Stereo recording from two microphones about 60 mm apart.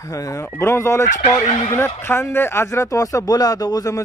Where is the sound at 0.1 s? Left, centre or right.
Left.